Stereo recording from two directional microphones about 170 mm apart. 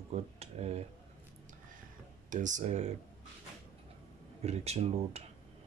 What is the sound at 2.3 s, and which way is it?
Speech, 50° right (ahead or behind).